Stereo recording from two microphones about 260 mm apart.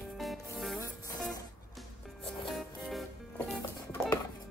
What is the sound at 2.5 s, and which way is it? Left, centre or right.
Music, centre.